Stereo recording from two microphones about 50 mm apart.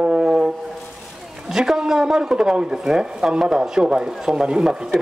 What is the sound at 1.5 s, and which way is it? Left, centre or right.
A man's voice, centre.